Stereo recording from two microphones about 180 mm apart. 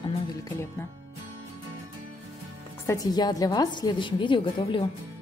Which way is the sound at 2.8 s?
20° left (ahead or behind).